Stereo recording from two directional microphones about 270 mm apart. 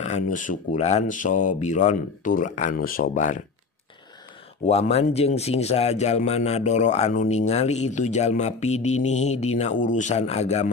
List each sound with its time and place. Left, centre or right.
0.0 s a man's voice: left
4.6 s a man's voice: left